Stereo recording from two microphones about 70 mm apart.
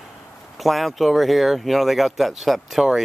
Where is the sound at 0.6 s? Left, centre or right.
Centre.